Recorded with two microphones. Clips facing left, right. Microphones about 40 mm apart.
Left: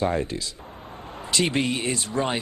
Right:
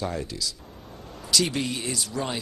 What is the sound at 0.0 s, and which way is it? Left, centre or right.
Speech, left.